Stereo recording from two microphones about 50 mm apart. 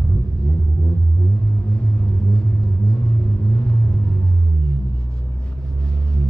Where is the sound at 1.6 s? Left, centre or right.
Left.